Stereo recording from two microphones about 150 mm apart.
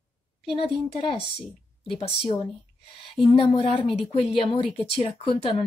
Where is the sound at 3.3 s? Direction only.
40° left (ahead or behind).